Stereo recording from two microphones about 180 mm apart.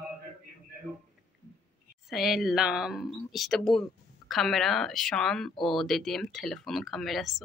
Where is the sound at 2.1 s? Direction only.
Centre (ahead or behind).